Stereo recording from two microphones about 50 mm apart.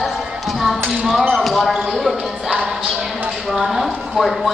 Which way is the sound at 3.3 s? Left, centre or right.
Centre.